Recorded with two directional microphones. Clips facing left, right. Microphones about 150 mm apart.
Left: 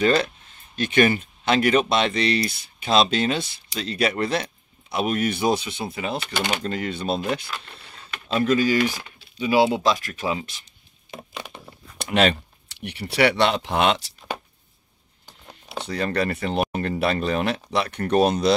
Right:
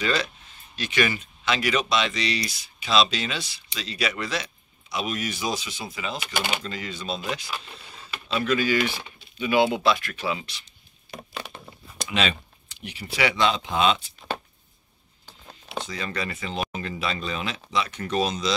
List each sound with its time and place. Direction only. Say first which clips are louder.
0.0 s speech: left 6 dB; 50° left (ahead or behind)
6.2 s speech: left 3 dB; 10° right (ahead or behind)
6.6 s speech: left 7 dB; 55° left (ahead or behind)
7.5 s speech: even; 10° right (ahead or behind)
8.3 s speech: left 4 dB; 40° left (ahead or behind)
12.0 s speech: left 6 dB; 60° left (ahead or behind)
15.9 s speech: left 11 dB; 60° left (ahead or behind)